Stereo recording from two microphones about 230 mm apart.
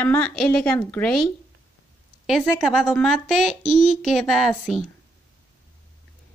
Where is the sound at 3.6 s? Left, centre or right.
Left.